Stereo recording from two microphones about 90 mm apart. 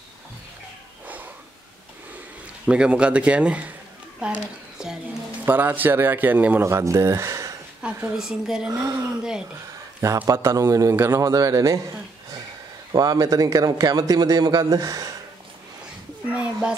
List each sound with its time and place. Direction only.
2.6 s a man's voice: 10° right (ahead or behind)
5.4 s a man's voice: 20° right (ahead or behind)
6.7 s speech: 35° right (ahead or behind)
8.1 s a man's voice: 5° right (ahead or behind)
8.7 s a man's voice: 40° right (ahead or behind)
10.2 s a man's voice: 35° right (ahead or behind)
12.9 s a man's voice: 45° right (ahead or behind)
16.3 s speech: 15° right (ahead or behind)